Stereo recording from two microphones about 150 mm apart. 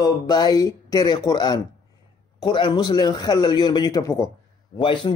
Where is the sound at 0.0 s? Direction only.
30° left (ahead or behind).